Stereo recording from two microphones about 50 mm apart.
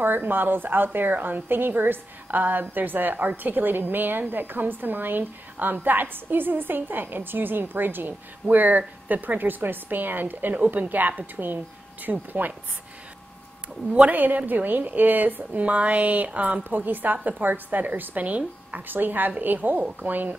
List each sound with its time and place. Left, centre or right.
0.0 s a woman's voice: right
14.1 s a woman's voice: right